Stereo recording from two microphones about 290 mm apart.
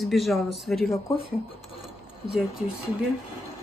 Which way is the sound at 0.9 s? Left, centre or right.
Centre.